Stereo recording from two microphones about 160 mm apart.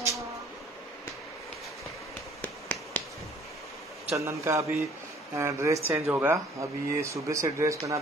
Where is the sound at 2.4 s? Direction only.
10° left (ahead or behind).